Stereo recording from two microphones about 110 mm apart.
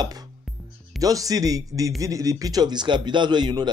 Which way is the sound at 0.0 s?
35° right (ahead or behind).